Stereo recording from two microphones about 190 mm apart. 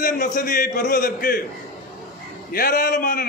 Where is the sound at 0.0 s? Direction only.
45° left (ahead or behind).